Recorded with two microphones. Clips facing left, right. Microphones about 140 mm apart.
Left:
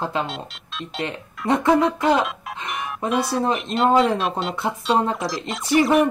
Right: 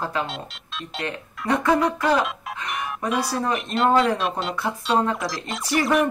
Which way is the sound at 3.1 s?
Centre (ahead or behind).